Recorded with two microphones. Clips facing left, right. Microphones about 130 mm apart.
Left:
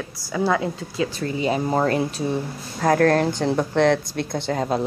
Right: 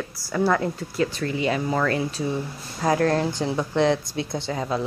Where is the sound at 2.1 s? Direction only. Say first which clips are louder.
Left 2 dB; 55° left (ahead or behind).